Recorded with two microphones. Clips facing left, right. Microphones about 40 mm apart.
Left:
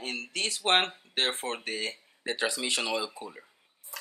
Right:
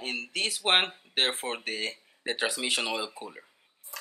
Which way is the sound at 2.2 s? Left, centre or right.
Centre.